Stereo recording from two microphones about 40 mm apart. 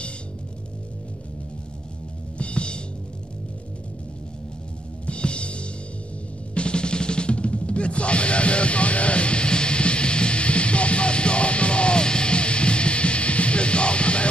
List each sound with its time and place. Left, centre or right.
2.3 s music: left
5.0 s music: left